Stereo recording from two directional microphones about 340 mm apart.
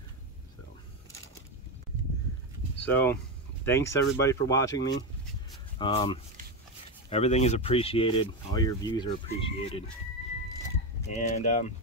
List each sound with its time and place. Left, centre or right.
2.9 s speech: centre
11.1 s speech: left